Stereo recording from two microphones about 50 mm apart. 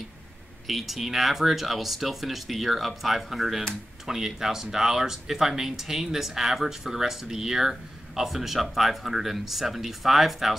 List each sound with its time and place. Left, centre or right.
0.7 s speech: centre